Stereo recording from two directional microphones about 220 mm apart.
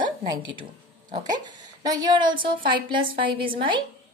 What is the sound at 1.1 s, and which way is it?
A woman's voice, 20° right (ahead or behind).